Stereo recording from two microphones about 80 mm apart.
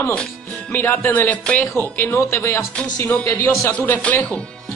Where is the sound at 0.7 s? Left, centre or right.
Left.